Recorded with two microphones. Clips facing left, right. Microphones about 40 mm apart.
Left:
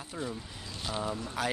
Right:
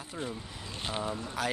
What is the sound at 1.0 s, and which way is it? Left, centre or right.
Speech, centre.